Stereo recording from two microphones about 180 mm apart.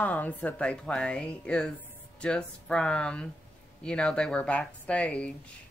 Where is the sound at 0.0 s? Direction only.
10° left (ahead or behind).